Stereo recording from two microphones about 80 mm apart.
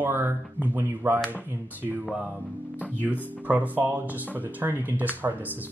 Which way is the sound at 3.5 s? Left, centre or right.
Right.